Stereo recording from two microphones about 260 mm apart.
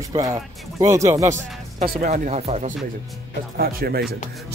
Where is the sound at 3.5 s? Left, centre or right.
Right.